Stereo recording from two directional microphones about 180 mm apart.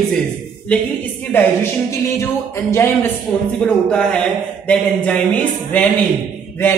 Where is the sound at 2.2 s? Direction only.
15° left (ahead or behind).